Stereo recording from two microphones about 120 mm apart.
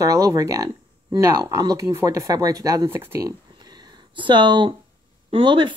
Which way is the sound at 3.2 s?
35° right (ahead or behind).